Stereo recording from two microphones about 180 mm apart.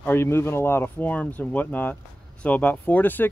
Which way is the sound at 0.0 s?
15° left (ahead or behind).